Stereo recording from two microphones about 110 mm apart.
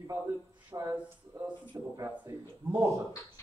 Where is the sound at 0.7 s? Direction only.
30° right (ahead or behind).